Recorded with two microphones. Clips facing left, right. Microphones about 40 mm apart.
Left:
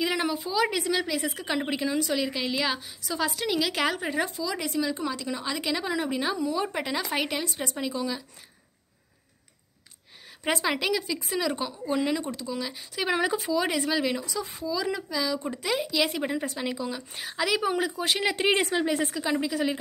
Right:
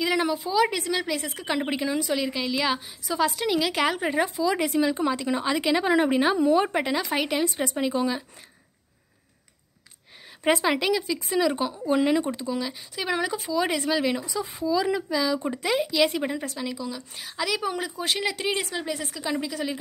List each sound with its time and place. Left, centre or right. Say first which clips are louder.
0.0 s a sound: right 3 dB; centre
0.3 s speech: right 3 dB; centre
2.7 s a woman's voice: right 3 dB; centre
5.9 s a woman's voice: right 9 dB; right
6.8 s speech: right 3 dB; centre
7.9 s a woman's voice: right 5 dB; right
10.4 s speech: right 4 dB; centre
11.7 s a woman's voice: right 5 dB; centre
12.5 s speech: right 1 dB; centre
15.6 s speech: right 4 dB; centre
16.4 s speech: left 1 dB; centre
18.2 s speech: left 3 dB; left
19.0 s speech: left 2 dB; centre